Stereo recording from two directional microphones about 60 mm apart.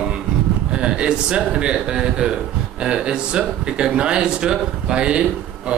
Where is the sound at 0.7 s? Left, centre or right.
Centre.